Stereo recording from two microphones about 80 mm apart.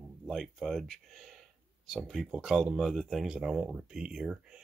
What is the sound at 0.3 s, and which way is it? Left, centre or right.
Speech, centre.